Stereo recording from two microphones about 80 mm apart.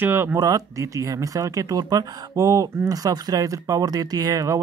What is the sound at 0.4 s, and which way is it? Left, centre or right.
Speech, right.